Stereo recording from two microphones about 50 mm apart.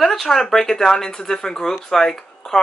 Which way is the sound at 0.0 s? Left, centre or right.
Centre.